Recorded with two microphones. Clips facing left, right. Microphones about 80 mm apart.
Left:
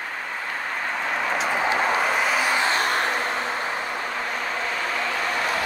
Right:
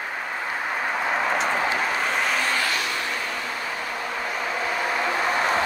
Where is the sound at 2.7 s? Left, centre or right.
Left.